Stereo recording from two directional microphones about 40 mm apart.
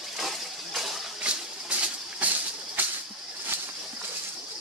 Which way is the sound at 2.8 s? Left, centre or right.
Right.